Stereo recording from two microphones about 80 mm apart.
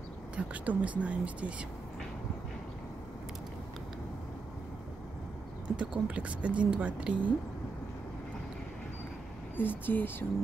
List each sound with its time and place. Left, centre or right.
0.4 s a woman's voice: centre
5.8 s a woman's voice: centre
9.6 s speech: left